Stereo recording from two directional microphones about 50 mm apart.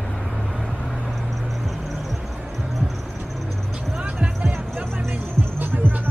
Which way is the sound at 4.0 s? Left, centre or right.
Centre.